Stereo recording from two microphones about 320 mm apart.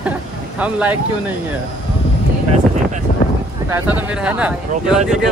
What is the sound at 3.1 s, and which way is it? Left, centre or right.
Speech, left.